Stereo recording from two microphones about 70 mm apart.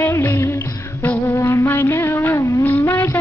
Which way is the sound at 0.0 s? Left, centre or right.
Left.